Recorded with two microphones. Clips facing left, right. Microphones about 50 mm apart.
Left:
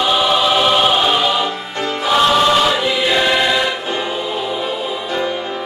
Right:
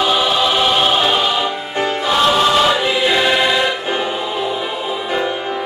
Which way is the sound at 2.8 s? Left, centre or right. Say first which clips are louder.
Right 1 dB; centre.